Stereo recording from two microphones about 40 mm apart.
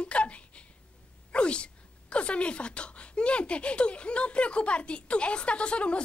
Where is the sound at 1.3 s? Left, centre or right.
Left.